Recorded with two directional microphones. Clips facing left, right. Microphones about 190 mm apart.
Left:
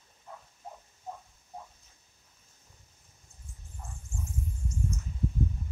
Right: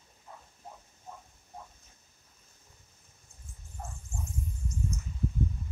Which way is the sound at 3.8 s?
65° right (ahead or behind).